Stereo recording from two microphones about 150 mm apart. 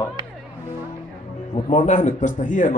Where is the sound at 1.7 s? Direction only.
50° left (ahead or behind).